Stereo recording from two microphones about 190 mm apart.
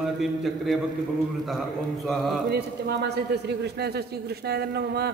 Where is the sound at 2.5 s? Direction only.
60° right (ahead or behind).